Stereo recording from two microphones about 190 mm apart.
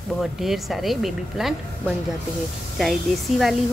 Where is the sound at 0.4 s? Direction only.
Centre (ahead or behind).